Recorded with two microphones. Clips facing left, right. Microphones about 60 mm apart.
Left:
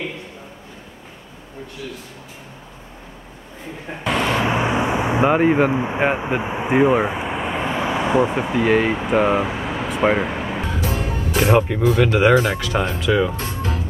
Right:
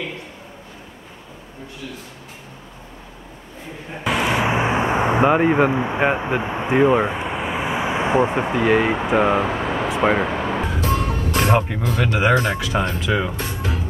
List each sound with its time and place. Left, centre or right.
4.0 s vehicle: centre
4.6 s a sound: right
5.2 s speech: centre; by 8.4 s right
8.5 s speech: centre
10.8 s music: centre
12.0 s speech: centre
13.4 s music: centre